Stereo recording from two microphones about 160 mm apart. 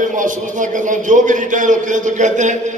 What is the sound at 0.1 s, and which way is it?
A man's voice, 55° right (ahead or behind).